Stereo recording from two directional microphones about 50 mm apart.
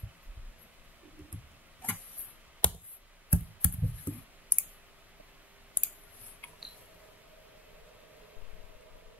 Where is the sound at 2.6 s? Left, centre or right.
Left.